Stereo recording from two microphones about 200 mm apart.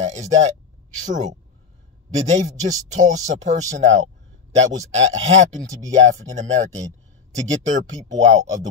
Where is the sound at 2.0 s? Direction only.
35° right (ahead or behind).